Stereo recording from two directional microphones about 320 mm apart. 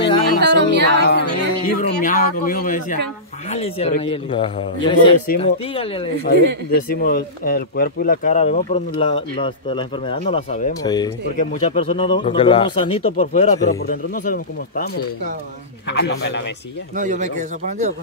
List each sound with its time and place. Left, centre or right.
0.4 s music: right
1.7 s speech: left
15.9 s speech: left
16.9 s a man's voice: right